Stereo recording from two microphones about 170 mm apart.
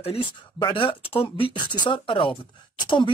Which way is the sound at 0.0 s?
30° left (ahead or behind).